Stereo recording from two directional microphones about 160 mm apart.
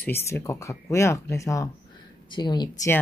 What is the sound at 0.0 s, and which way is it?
Speech, 15° left (ahead or behind).